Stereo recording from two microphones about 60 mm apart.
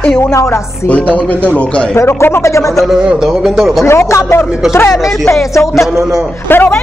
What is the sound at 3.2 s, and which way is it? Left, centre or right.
Speech, centre.